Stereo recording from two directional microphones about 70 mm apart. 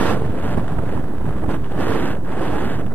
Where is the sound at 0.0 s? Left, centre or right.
Left.